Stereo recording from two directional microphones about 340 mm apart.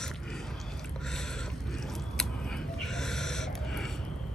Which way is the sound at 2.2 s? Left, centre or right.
Centre.